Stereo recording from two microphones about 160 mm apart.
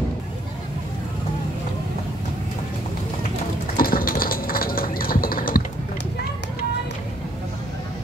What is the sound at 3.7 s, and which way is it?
Typing, 65° left (ahead or behind).